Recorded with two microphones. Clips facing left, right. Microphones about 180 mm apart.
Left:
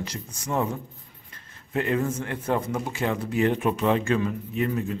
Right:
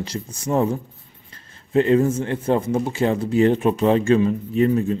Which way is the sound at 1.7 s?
30° right (ahead or behind).